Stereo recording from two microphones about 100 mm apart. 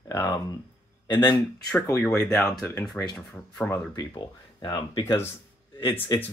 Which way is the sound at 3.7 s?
40° left (ahead or behind).